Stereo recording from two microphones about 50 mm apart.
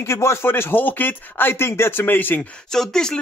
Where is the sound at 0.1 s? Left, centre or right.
Left.